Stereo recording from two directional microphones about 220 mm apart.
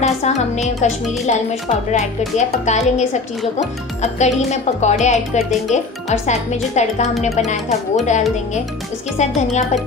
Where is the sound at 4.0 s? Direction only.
30° left (ahead or behind).